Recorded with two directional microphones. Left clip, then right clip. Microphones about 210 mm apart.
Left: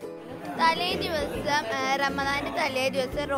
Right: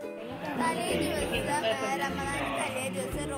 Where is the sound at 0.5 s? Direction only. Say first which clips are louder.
Left 6 dB; 30° left (ahead or behind).